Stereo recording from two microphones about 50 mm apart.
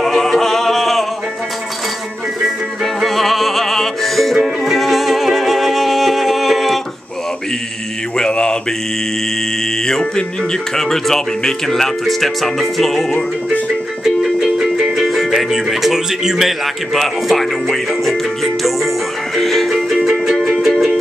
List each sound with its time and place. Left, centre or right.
0.0 s music: centre
2.4 s music: centre
8.2 s mantra: centre
9.8 s speech: centre
14.0 s music: centre